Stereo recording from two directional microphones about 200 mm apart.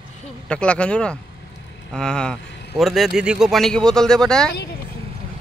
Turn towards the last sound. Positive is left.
turn(degrees=55)  # may be behind; listen again after turning